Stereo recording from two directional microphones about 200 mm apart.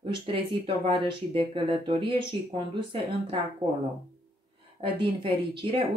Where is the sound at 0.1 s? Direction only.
25° right (ahead or behind).